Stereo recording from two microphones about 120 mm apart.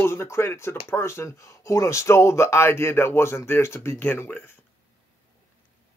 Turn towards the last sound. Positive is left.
turn(degrees=20)  # may be behind; listen again after turning